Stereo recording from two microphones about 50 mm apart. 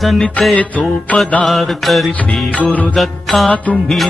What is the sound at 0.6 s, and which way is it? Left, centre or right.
Music, left.